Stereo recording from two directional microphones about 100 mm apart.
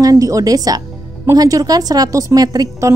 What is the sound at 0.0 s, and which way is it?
Speech, 35° right (ahead or behind).